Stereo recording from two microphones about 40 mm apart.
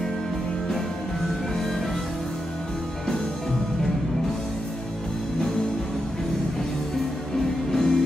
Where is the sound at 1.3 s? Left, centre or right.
Centre.